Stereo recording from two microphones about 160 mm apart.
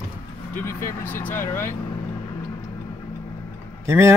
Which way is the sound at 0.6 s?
15° left (ahead or behind).